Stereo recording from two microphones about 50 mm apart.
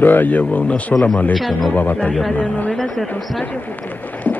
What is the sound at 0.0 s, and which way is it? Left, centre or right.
Speech, left.